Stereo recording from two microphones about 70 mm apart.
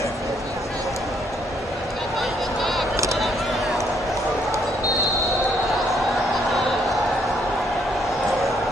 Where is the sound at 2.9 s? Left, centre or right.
Right.